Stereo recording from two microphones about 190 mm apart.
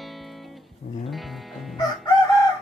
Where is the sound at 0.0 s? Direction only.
Centre (ahead or behind).